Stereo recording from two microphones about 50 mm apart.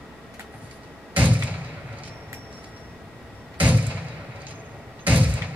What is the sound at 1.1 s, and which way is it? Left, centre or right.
Thump, right.